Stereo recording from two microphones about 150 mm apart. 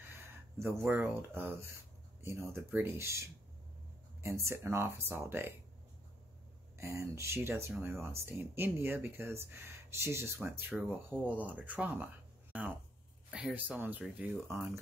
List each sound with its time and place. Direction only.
0.8 s speech: 15° right (ahead or behind)
6.8 s speech: 20° right (ahead or behind)